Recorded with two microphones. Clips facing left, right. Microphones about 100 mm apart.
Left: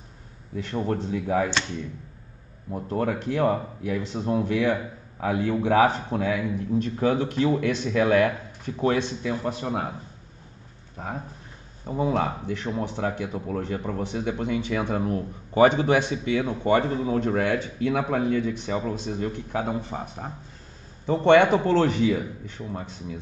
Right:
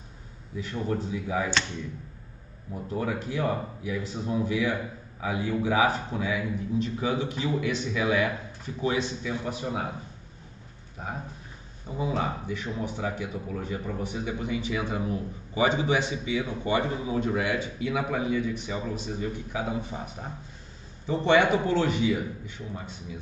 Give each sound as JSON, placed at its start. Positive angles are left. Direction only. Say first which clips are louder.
{"t": 0.6, "sound": "a man's voice", "louder": "left 3 dB", "side_deg": 65}
{"t": 2.7, "sound": "a man's voice", "louder": "left 4 dB", "side_deg": 55}
{"t": 9.2, "sound": "a man's voice", "louder": "left 4 dB", "side_deg": 50}
{"t": 11.8, "sound": "a man's voice", "louder": "left 5 dB", "side_deg": 55}
{"t": 21.1, "sound": "a man's voice", "louder": "left 5 dB", "side_deg": 55}